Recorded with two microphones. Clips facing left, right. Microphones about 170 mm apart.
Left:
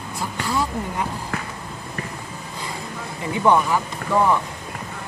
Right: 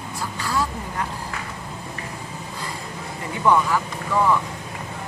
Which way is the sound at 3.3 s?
20° left (ahead or behind).